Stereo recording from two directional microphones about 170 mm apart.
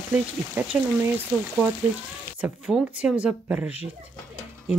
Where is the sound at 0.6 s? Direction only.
15° right (ahead or behind).